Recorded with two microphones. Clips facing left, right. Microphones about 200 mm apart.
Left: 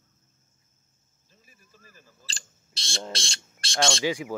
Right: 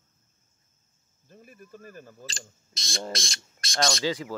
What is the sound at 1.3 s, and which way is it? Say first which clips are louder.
Speech: right 14 dB; 55° right (ahead or behind).